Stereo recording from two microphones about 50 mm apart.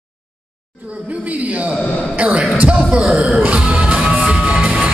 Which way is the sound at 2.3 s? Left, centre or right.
Right.